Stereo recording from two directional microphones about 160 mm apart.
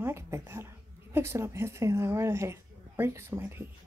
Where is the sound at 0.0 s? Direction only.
15° right (ahead or behind).